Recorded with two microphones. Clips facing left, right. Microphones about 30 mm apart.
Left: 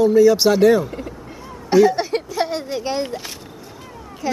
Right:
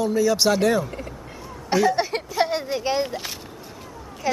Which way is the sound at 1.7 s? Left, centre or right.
Centre.